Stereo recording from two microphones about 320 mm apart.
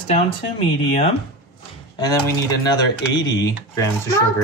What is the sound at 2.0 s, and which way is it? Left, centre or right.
Speech, centre.